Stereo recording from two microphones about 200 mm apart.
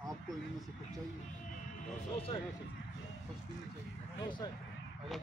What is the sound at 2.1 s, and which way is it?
Speech, 30° left (ahead or behind).